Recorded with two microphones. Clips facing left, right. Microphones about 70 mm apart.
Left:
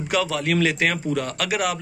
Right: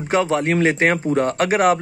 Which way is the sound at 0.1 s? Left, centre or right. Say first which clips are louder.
Right 5 dB; right.